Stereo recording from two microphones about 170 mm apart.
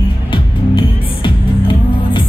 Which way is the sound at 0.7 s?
30° left (ahead or behind).